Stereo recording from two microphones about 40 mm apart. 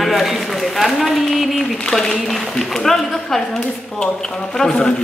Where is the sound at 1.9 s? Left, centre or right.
Centre.